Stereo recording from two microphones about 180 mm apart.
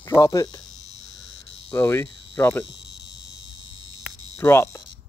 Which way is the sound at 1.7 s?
10° left (ahead or behind).